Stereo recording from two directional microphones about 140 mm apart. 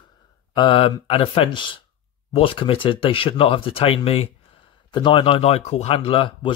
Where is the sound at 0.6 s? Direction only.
35° left (ahead or behind).